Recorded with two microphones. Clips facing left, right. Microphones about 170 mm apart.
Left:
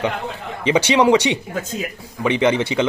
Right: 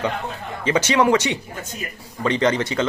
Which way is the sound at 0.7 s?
15° left (ahead or behind).